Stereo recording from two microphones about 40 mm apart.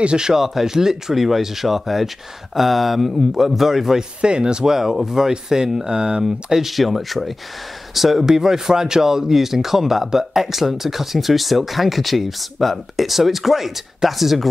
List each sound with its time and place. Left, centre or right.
0.0 s speech: right
0.3 s speech: centre
4.2 s speech: right
4.7 s speech: centre
6.2 s speech: centre